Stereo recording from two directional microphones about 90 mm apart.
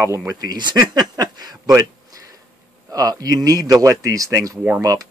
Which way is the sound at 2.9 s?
45° right (ahead or behind).